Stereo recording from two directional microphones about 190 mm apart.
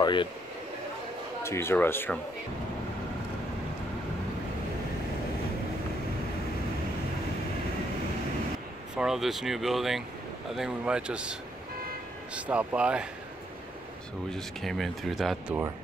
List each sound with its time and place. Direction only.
0.0 s speech: 25° left (ahead or behind)
1.4 s speech: 15° left (ahead or behind)
8.9 s speech: centre (ahead or behind)
12.4 s speech: 5° right (ahead or behind)
14.3 s speech: centre (ahead or behind)